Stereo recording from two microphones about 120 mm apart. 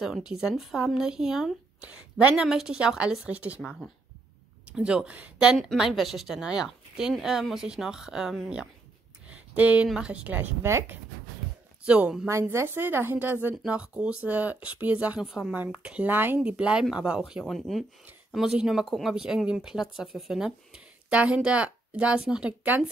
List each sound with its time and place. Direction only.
0.0 s speech: 5° right (ahead or behind)
4.7 s speech: 5° right (ahead or behind)
9.3 s a sound: 10° right (ahead or behind)
9.8 s speech: 10° right (ahead or behind)
11.8 s speech: 10° right (ahead or behind)
12.3 s speech: 20° right (ahead or behind)